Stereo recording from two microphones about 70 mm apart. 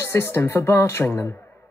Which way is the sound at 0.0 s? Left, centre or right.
Left.